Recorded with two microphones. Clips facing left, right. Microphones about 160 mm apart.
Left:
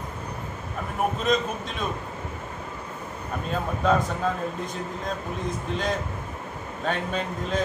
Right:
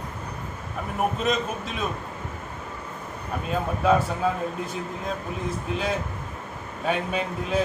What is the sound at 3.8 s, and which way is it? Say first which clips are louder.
Speech: right 2 dB; 5° right (ahead or behind).